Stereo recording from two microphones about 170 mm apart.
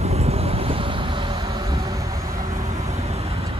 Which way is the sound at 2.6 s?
40° right (ahead or behind).